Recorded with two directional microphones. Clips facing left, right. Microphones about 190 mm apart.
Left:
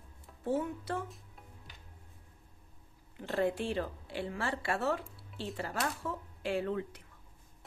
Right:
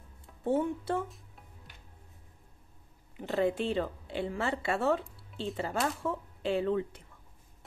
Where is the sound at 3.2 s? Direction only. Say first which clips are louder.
Right 3 dB; 20° right (ahead or behind).